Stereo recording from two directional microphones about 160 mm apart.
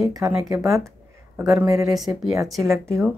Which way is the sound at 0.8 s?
20° right (ahead or behind).